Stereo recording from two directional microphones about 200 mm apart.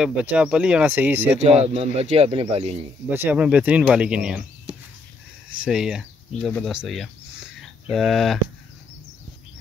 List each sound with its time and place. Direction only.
0.0 s speech: 5° right (ahead or behind)
1.4 s speech: 30° right (ahead or behind)
3.1 s speech: 10° right (ahead or behind)
5.6 s speech: 5° right (ahead or behind)